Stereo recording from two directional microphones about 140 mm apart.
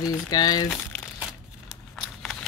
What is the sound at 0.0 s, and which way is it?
Speech, 25° left (ahead or behind).